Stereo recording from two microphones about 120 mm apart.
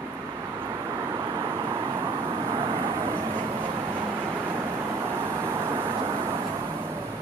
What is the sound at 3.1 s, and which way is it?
Vehicle, 15° right (ahead or behind).